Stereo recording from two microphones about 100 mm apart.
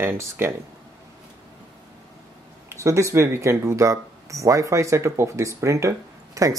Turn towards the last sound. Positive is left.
turn(degrees=-30)  # may be behind; listen again after turning